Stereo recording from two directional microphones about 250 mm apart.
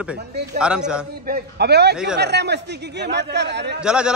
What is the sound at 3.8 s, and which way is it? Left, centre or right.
Speech, centre.